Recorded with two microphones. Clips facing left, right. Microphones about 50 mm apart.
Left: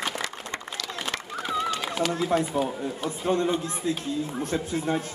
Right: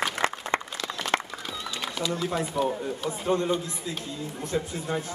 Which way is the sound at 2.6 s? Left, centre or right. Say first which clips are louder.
Even; left.